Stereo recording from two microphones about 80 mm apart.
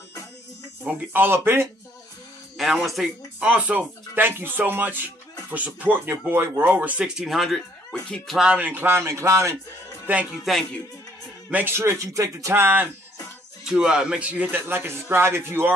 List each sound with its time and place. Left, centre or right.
0.8 s a man's voice: right
2.5 s speech: centre
3.3 s a man's voice: centre
7.2 s speech: centre
8.3 s speech: centre; by 9.6 s right
10.3 s speech: centre
11.5 s speech: right
13.7 s a man's voice: centre; by 15.7 s right